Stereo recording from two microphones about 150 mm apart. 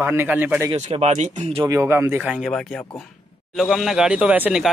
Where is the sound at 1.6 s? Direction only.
20° right (ahead or behind).